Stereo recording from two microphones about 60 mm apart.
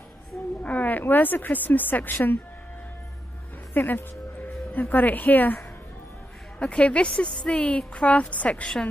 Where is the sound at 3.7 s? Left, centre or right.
Left.